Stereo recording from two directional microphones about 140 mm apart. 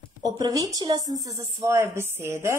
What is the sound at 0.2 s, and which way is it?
A woman's voice, 25° right (ahead or behind).